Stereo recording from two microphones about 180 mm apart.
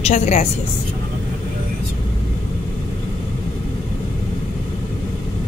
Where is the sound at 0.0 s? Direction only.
40° left (ahead or behind).